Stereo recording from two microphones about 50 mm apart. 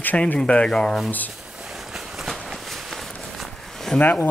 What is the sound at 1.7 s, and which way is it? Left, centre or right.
Walk, centre.